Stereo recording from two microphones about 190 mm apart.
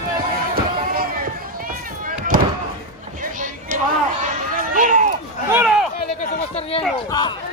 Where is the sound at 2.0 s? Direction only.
45° right (ahead or behind).